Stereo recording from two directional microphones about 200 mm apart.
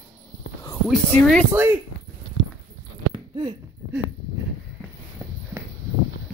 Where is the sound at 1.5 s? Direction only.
10° right (ahead or behind).